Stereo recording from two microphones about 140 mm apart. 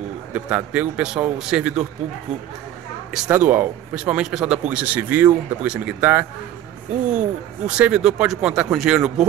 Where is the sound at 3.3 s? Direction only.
15° right (ahead or behind).